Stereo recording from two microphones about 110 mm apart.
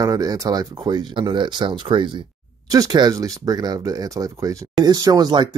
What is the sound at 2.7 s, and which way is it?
Speech, 35° right (ahead or behind).